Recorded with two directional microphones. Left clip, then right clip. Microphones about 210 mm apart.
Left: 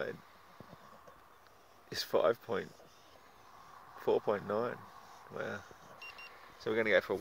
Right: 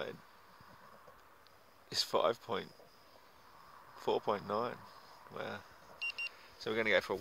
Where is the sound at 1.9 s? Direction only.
10° left (ahead or behind).